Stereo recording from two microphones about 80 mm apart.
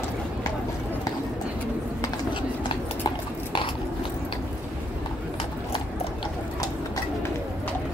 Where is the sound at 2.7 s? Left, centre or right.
Left.